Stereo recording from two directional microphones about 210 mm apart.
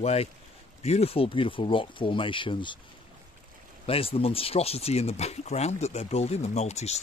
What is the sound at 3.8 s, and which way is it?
Speech, 25° left (ahead or behind).